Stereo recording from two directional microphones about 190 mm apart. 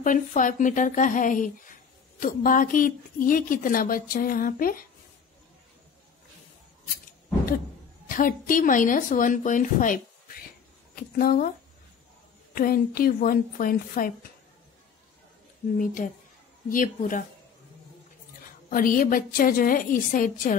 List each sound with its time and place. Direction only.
0.0 s a woman's voice: 45° left (ahead or behind)
8.1 s a woman's voice: 45° left (ahead or behind)
11.0 s speech: 50° left (ahead or behind)
12.5 s a woman's voice: 50° left (ahead or behind)
15.8 s a woman's voice: 45° left (ahead or behind)
18.7 s a woman's voice: 45° left (ahead or behind)